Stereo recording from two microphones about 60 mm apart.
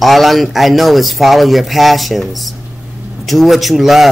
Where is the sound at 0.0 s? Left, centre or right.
Centre.